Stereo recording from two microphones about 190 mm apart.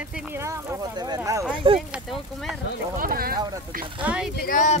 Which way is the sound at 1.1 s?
20° right (ahead or behind).